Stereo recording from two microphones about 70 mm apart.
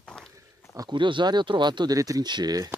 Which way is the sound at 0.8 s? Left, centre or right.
Right.